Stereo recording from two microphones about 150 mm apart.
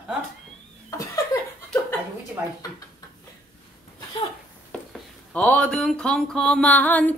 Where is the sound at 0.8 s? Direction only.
25° left (ahead or behind).